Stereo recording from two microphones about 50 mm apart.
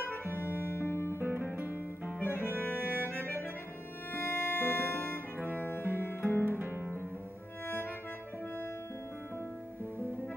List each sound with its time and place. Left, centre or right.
0.6 s music: left
1.1 s music: right
2.2 s music: left
7.6 s music: left